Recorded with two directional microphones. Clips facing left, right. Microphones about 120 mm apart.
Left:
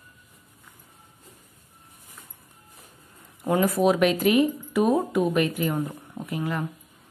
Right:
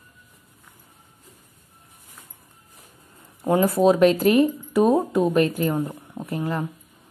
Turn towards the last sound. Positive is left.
turn(degrees=-35)  # may be behind; listen again after turning